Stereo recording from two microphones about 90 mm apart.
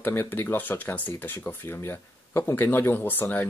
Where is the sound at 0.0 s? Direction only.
25° left (ahead or behind).